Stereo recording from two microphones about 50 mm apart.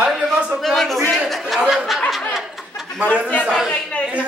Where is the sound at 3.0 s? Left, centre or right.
Left.